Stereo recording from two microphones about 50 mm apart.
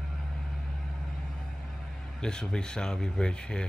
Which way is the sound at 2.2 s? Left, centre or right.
Centre.